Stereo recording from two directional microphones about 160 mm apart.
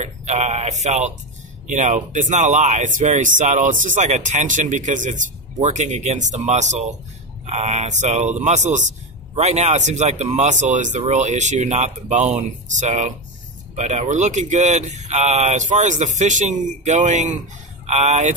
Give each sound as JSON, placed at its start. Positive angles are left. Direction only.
{"t": 0.0, "sound": "speech", "side_deg": -45}